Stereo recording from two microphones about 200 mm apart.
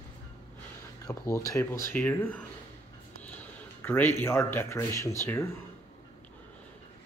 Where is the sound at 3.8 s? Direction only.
10° left (ahead or behind).